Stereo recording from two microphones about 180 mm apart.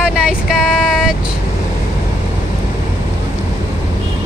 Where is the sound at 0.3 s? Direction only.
5° right (ahead or behind).